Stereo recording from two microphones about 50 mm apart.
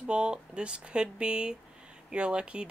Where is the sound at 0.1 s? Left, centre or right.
Centre.